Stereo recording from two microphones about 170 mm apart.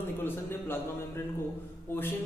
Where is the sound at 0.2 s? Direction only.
15° left (ahead or behind).